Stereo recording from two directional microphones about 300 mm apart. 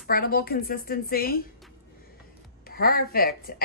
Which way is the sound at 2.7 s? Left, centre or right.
Left.